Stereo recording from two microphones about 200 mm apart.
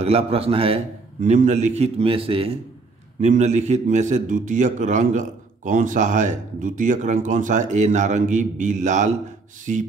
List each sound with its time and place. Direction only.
0.0 s a man's voice: 30° right (ahead or behind)